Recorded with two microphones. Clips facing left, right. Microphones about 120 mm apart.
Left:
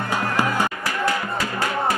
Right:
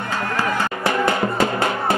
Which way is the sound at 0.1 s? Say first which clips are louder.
Even; 15° left (ahead or behind).